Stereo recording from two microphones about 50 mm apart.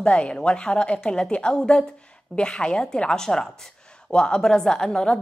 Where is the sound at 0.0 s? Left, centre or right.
Left.